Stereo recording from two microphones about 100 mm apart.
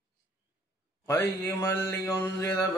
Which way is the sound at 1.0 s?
25° left (ahead or behind).